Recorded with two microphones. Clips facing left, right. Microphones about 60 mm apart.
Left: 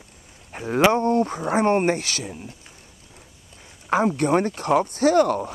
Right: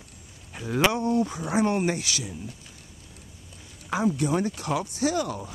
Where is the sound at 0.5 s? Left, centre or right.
Left.